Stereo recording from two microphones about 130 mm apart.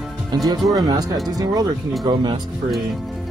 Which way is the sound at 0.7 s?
30° right (ahead or behind).